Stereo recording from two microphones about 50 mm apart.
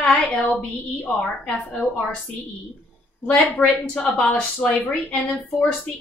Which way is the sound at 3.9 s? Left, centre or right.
Left.